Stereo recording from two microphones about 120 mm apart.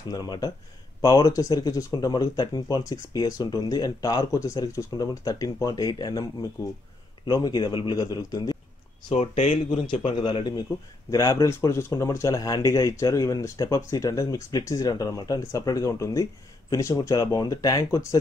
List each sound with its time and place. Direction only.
0.1 s speech: 35° left (ahead or behind)
7.2 s speech: 35° left (ahead or behind)
9.1 s speech: 65° left (ahead or behind)
9.8 s speech: 45° left (ahead or behind)